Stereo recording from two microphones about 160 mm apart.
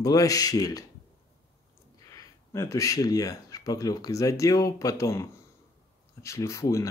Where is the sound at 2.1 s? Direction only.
20° left (ahead or behind).